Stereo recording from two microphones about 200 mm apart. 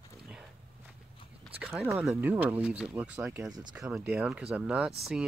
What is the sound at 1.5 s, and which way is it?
Speech, 5° right (ahead or behind).